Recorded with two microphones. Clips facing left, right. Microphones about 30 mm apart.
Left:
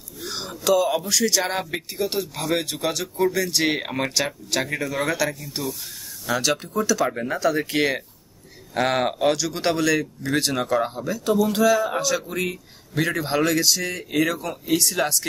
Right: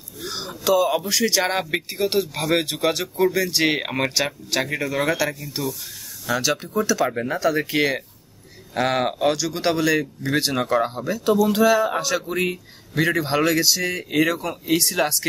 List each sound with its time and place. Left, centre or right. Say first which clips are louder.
0.2 s a sound: right 1 dB; centre
0.5 s speech: right 1 dB; centre; by 2.1 s right
2.1 s speech: right 5 dB; centre
6.7 s speech: right 2 dB; centre
7.1 s speech: right 1 dB; centre; by 12.5 s right
12.9 s speech: right 2 dB; centre